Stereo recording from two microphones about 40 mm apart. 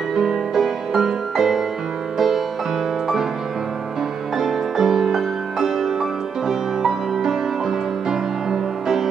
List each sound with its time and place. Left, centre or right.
0.1 s music: centre
4.4 s music: centre